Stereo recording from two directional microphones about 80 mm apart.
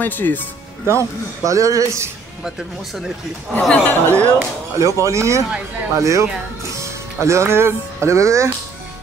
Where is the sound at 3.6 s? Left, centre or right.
Centre.